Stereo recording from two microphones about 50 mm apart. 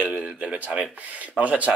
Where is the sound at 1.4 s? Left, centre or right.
Right.